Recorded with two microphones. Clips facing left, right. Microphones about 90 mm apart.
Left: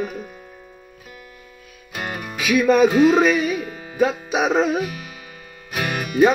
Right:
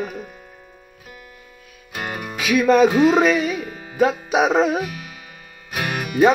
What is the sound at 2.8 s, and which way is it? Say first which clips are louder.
Speech: even; 10° right (ahead or behind).